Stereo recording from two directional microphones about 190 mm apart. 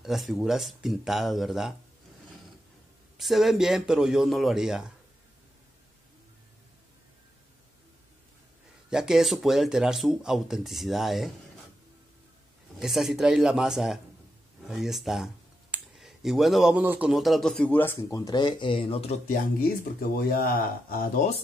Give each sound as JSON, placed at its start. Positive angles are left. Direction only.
{"t": 0.0, "sound": "speech", "side_deg": 0}
{"t": 3.2, "sound": "speech", "side_deg": 0}
{"t": 8.9, "sound": "speech", "side_deg": -5}
{"t": 12.7, "sound": "speech", "side_deg": 0}
{"t": 19.8, "sound": "speech", "side_deg": 50}